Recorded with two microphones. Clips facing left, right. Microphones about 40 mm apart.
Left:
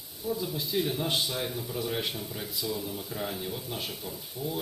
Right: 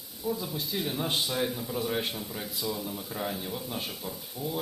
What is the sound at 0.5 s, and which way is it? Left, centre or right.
Speech, right.